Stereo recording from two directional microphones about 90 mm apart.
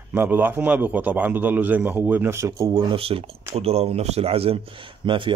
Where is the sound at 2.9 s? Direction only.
90° right.